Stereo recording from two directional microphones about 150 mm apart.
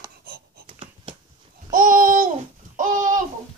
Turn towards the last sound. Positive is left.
turn(degrees=-60)  # may be behind; listen again after turning